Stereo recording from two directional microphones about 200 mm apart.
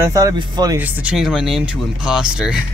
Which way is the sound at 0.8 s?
10° right (ahead or behind).